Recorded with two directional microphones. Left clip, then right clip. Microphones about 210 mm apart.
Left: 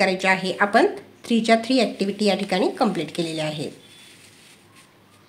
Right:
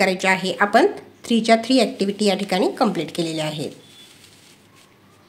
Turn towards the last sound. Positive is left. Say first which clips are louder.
# right 2 dB
turn(degrees=-10)  # may be behind; listen again after turning